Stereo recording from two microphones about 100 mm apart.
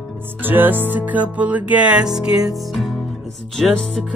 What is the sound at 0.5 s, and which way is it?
Music, 20° right (ahead or behind).